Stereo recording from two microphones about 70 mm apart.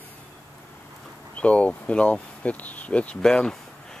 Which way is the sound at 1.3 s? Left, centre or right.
Centre.